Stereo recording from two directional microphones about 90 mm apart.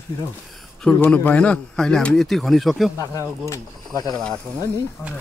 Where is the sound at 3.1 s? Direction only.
35° left (ahead or behind).